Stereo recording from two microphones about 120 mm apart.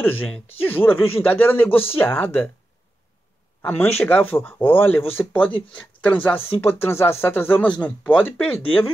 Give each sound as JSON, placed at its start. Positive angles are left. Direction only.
{"t": 0.0, "sound": "speech", "side_deg": 15}
{"t": 3.6, "sound": "speech", "side_deg": 15}